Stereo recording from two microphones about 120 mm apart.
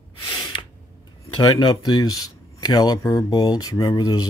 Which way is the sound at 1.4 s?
40° left (ahead or behind).